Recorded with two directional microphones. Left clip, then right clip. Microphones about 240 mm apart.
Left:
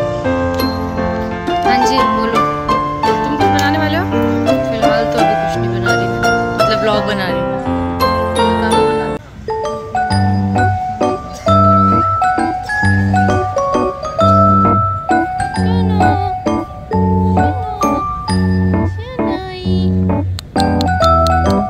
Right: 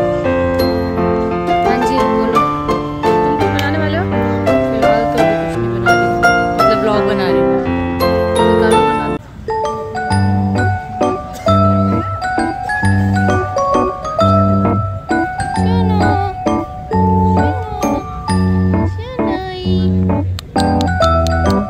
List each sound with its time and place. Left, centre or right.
0.2 s music: centre
3.6 s music: left
4.2 s music: centre
10.0 s music: centre
15.6 s music: centre
16.4 s music: centre